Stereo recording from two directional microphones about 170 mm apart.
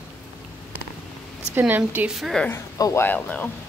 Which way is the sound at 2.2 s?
5° left (ahead or behind).